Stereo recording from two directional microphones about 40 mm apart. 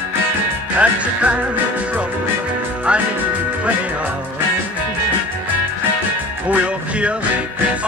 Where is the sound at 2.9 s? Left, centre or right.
Right.